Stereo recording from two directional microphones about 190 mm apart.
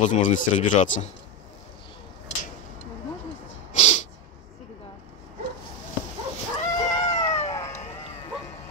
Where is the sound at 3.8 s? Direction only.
35° left (ahead or behind).